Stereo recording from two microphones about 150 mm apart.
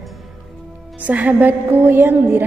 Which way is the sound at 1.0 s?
10° right (ahead or behind).